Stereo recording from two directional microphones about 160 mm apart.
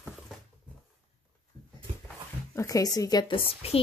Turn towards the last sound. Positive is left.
turn(degrees=40)  # may be behind; listen again after turning